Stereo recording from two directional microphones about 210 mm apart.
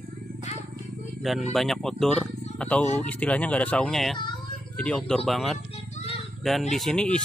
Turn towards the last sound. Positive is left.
turn(degrees=0)  # may be behind; listen again after turning